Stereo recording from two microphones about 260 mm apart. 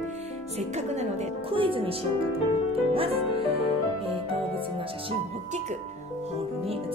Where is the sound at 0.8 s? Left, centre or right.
Right.